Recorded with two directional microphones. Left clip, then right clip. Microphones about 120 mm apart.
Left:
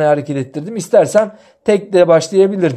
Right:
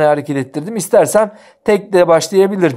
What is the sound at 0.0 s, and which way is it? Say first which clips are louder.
Speech: right 1 dB; 30° right (ahead or behind).